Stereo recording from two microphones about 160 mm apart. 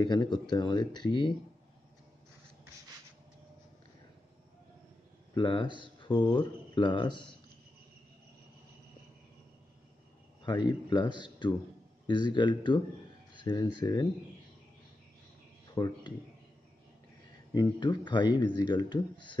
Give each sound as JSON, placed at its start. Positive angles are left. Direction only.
{"t": 0.0, "sound": "speech", "side_deg": 25}
{"t": 5.3, "sound": "speech", "side_deg": 30}
{"t": 10.4, "sound": "speech", "side_deg": 30}
{"t": 15.7, "sound": "speech", "side_deg": 25}
{"t": 17.6, "sound": "speech", "side_deg": 30}